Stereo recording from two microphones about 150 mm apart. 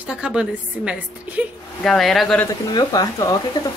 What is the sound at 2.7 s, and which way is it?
Speech, 25° left (ahead or behind).